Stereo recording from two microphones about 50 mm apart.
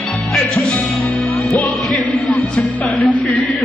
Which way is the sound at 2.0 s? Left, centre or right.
Left.